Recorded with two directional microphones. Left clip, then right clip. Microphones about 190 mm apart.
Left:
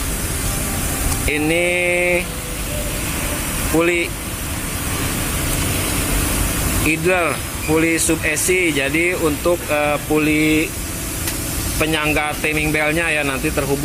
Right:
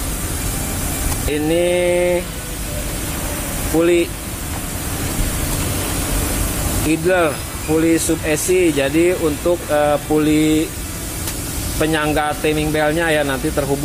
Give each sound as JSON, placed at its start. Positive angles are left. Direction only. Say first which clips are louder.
{"t": 1.3, "sound": "a sound", "louder": "right 1 dB", "side_deg": -5}
{"t": 3.8, "sound": "speech", "louder": "right 4 dB", "side_deg": -5}
{"t": 6.9, "sound": "speech", "louder": "right 2 dB", "side_deg": -5}
{"t": 11.8, "sound": "speech", "louder": "right 1 dB", "side_deg": -20}
{"t": 12.4, "sound": "speech", "louder": "even", "side_deg": -5}